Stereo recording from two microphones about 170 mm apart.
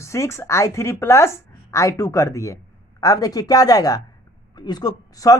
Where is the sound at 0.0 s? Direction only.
15° left (ahead or behind).